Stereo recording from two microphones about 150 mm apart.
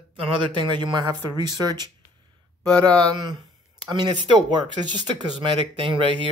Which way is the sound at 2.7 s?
25° right (ahead or behind).